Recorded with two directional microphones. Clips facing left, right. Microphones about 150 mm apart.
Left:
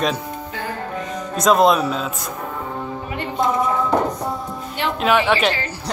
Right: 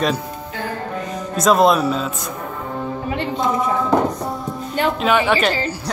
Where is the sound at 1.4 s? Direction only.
Centre (ahead or behind).